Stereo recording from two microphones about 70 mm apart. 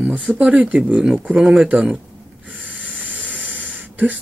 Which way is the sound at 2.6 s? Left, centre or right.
Right.